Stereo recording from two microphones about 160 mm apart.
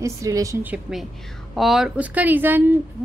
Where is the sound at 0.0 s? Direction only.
20° right (ahead or behind).